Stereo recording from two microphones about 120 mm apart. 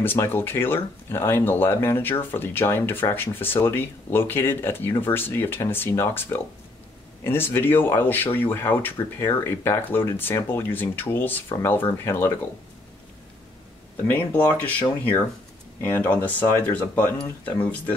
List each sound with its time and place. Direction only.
0.0 s speech: 15° left (ahead or behind)
14.1 s speech: 15° left (ahead or behind)